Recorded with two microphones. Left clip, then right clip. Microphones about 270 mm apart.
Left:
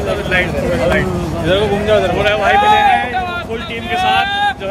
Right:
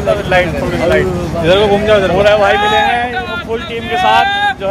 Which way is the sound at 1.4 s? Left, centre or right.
Right.